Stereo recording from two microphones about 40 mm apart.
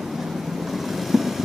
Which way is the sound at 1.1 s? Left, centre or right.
Centre.